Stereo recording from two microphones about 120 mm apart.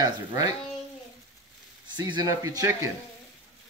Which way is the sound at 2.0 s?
35° right (ahead or behind).